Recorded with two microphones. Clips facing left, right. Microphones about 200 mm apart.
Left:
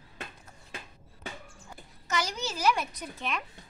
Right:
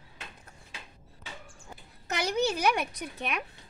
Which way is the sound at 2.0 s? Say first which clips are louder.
Right 5 dB; 60° right (ahead or behind).